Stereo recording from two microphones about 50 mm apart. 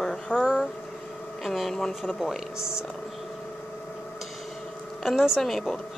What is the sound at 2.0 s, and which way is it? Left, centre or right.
Speech, centre.